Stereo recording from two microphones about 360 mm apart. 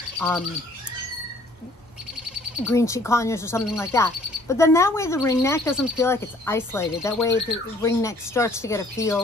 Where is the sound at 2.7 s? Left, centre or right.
Centre.